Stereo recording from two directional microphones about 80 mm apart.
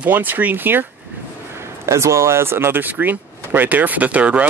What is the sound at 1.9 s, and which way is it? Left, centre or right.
Speech, right.